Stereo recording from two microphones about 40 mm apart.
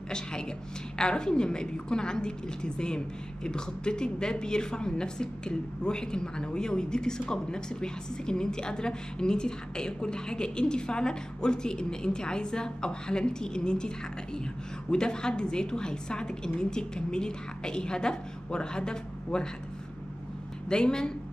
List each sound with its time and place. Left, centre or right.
0.1 s a woman's voice: centre
20.6 s speech: left